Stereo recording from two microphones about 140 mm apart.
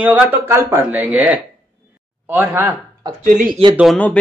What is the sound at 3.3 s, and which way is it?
Speech, 70° right (ahead or behind).